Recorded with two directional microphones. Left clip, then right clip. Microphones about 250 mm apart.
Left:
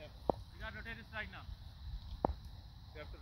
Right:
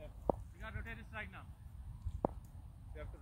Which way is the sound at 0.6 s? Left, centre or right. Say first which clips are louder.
Left 2 dB; left.